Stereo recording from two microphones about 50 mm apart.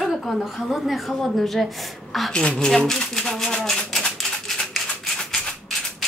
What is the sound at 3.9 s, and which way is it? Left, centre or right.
Maraca, centre.